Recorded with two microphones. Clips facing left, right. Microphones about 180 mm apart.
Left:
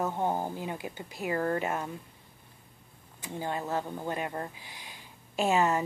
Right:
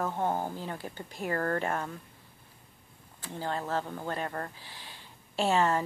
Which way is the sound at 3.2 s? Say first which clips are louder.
Even; 15° left (ahead or behind).